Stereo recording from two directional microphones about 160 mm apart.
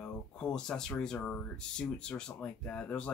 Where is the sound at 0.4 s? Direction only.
5° left (ahead or behind).